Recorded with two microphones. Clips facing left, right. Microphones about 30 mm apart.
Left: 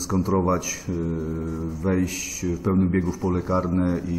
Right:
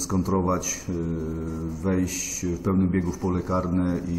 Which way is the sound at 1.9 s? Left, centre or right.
Centre.